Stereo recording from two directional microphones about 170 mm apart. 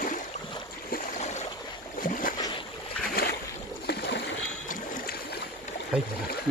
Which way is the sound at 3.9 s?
80° left.